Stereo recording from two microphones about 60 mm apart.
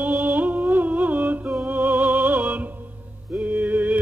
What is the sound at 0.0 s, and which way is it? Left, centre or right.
Music, right.